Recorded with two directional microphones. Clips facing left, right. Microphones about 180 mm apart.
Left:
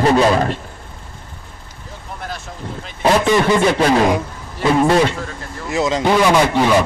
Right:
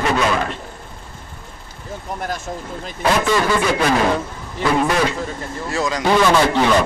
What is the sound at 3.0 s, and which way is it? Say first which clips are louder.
A man's voice: left 3 dB; 20° left (ahead or behind).